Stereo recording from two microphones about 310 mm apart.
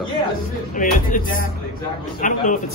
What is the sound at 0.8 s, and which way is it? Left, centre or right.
Speech, left.